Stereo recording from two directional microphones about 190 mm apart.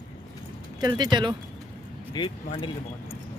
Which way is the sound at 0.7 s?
20° right (ahead or behind).